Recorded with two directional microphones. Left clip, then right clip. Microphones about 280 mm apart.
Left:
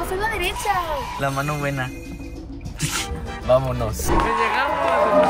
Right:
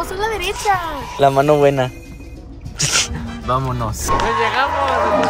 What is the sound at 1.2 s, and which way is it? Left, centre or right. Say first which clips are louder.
Speech: right 16 dB; centre.